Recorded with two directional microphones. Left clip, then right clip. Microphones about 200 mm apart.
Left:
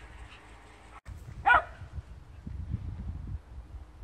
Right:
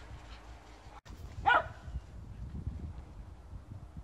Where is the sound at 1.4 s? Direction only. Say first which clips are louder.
Left 4 dB; 30° left (ahead or behind).